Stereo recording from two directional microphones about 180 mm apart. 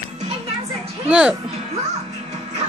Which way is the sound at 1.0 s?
5° right (ahead or behind).